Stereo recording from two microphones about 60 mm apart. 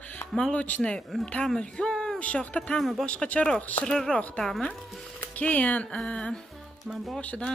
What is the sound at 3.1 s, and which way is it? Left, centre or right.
Speech, left.